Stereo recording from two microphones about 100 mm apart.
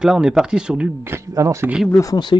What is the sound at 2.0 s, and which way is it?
Speech, 40° left (ahead or behind).